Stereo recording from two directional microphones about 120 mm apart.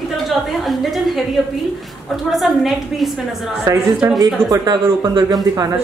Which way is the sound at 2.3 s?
Centre (ahead or behind).